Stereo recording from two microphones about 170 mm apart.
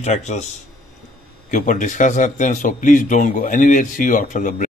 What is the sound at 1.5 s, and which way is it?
A man's voice, 50° left (ahead or behind).